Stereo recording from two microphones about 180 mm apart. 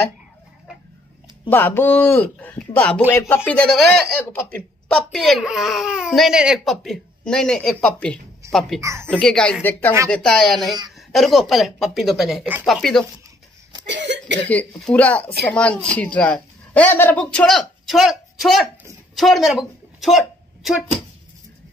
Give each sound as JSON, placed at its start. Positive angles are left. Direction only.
{"t": 1.5, "sound": "a woman's voice", "side_deg": 10}
{"t": 8.8, "sound": "speech", "side_deg": -15}
{"t": 9.1, "sound": "a woman's voice", "side_deg": 5}
{"t": 13.8, "sound": "cough", "side_deg": -75}
{"t": 14.5, "sound": "a woman's voice", "side_deg": 10}